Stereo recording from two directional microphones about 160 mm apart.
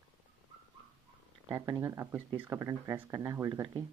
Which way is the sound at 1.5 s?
20° right (ahead or behind).